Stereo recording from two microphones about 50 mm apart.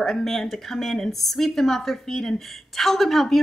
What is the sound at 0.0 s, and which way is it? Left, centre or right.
Speech, centre.